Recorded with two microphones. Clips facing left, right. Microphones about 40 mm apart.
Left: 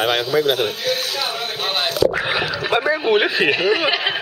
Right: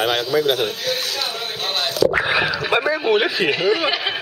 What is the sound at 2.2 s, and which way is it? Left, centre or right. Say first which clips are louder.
Speech: right 2 dB; centre.